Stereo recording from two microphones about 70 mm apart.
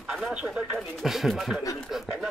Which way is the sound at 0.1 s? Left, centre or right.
Centre.